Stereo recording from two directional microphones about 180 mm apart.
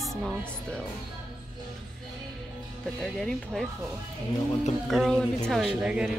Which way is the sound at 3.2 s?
Centre (ahead or behind).